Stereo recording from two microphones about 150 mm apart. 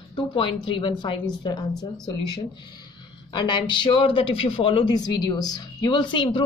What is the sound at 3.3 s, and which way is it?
Speech, 30° left (ahead or behind).